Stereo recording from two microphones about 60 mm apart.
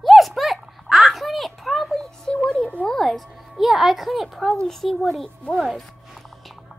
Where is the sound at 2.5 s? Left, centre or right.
Centre.